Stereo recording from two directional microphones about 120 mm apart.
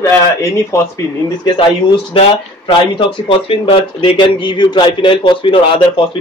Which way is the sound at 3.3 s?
50° left (ahead or behind).